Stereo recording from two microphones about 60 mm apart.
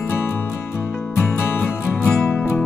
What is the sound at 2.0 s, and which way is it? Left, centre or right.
Music, centre.